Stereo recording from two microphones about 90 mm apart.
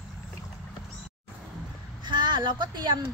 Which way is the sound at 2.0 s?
60° right (ahead or behind).